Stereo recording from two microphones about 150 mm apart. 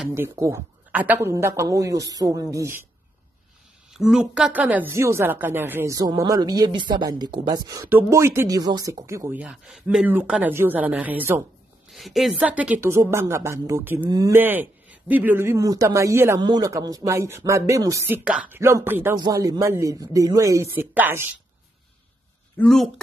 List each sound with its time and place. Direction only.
0.1 s speech: 20° right (ahead or behind)
3.9 s speech: 5° right (ahead or behind)
11.9 s speech: centre (ahead or behind)
18.6 s speech: 20° right (ahead or behind)
22.6 s speech: 5° left (ahead or behind)